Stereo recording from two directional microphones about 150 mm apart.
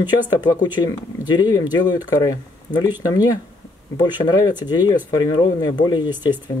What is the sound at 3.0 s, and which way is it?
Speech, 25° left (ahead or behind).